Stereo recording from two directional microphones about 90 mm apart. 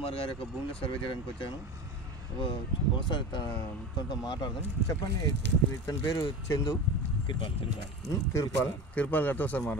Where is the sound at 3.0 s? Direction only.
60° left (ahead or behind).